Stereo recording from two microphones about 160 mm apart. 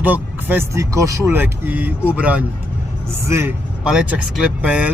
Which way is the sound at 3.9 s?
5° right (ahead or behind).